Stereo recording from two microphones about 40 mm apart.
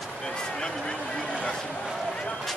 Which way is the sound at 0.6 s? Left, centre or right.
Left.